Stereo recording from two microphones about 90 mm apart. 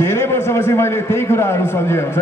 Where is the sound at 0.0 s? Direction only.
25° left (ahead or behind).